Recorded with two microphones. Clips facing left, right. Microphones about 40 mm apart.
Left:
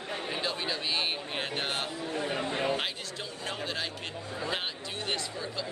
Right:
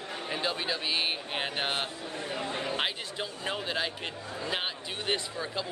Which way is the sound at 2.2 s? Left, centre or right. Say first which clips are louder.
Left 3 dB; left.